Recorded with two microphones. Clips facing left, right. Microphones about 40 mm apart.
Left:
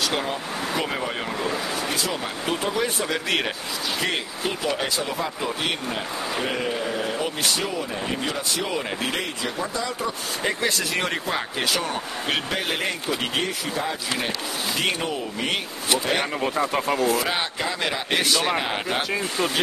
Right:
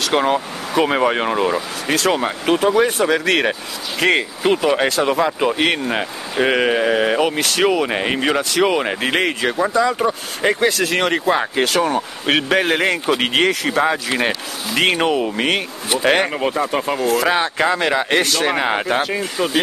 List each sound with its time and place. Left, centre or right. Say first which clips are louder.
0.2 s speech: right 8 dB; right
4.0 s speech: right 12 dB; right
4.5 s speech: right 10 dB; right
10.9 s speech: right 7 dB; right
11.2 s speech: right 8 dB; right
12.5 s a man's voice: right 10 dB; right
12.8 s speech: right 8 dB; right
16.5 s speech: right 3 dB; centre
17.6 s speech: right 9 dB; right
19.0 s speech: right 4 dB; centre